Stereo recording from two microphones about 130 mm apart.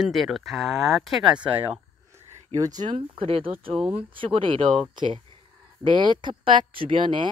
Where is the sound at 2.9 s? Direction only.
45° right (ahead or behind).